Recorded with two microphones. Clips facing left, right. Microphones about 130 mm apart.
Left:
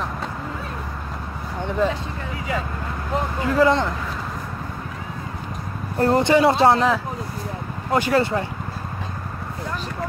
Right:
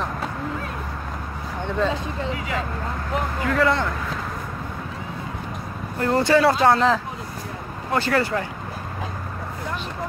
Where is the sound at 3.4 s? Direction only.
25° left (ahead or behind).